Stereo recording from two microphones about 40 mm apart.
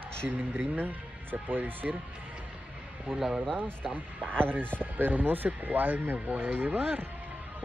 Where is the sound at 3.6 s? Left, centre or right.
Right.